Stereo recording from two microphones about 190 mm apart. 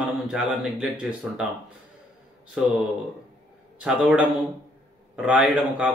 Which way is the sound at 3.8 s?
5° right (ahead or behind).